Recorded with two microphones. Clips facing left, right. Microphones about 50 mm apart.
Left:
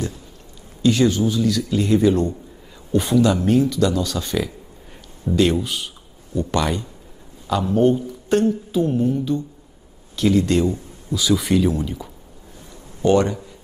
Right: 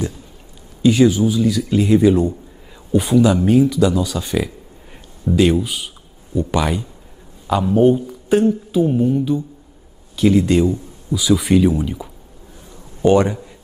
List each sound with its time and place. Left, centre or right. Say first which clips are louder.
0.8 s speech: right 4 dB; centre